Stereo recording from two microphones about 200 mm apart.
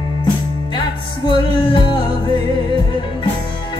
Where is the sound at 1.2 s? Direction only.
25° left (ahead or behind).